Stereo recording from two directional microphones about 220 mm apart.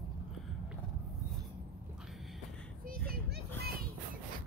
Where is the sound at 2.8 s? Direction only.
45° right (ahead or behind).